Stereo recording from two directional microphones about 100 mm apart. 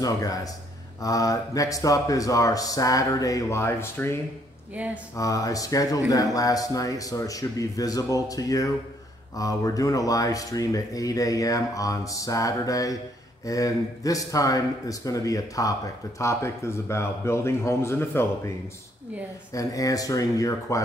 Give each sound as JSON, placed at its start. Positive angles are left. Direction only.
{"t": 0.0, "sound": "speech", "side_deg": 35}
{"t": 19.5, "sound": "speech", "side_deg": 35}